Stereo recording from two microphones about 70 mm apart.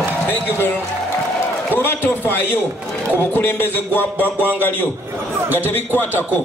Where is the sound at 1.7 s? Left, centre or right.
Left.